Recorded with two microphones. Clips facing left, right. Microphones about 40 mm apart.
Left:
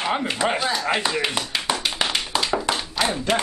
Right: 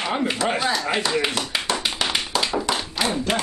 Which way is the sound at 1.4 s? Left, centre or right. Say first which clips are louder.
Right 1 dB; centre.